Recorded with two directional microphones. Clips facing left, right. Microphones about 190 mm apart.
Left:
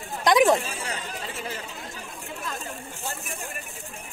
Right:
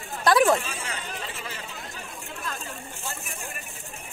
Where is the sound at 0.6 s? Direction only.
35° left (ahead or behind).